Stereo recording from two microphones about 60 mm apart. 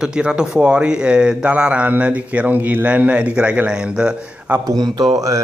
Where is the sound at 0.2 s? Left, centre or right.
Centre.